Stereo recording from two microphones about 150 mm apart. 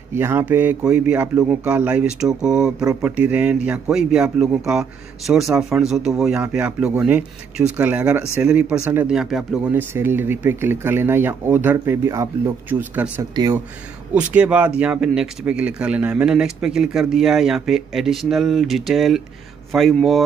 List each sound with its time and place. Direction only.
0.1 s speech: 15° right (ahead or behind)
9.7 s speech: 15° right (ahead or behind)
13.3 s speech: 25° right (ahead or behind)
14.1 s speech: 10° right (ahead or behind)